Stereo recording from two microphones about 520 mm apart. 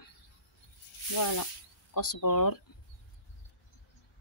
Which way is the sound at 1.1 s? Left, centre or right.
Left.